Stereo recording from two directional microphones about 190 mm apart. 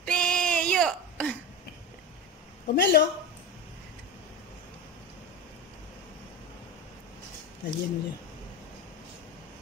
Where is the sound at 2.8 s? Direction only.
60° left (ahead or behind).